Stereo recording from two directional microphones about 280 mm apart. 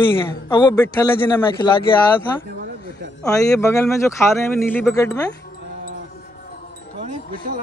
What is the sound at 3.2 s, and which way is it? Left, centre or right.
Speech, centre.